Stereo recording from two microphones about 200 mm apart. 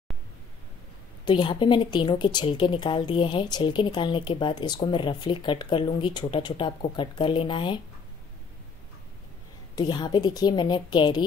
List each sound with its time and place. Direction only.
1.2 s a woman's voice: 25° left (ahead or behind)
9.8 s a woman's voice: 20° left (ahead or behind)